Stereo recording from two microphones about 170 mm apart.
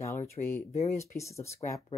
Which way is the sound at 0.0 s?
15° left (ahead or behind).